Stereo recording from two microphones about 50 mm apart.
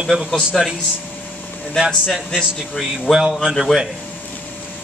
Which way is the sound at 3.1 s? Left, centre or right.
Centre.